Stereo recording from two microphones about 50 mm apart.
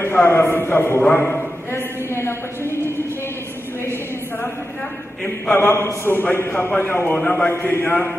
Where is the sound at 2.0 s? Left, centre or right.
Left.